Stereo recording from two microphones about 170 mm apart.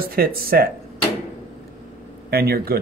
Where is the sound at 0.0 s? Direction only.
60° right (ahead or behind).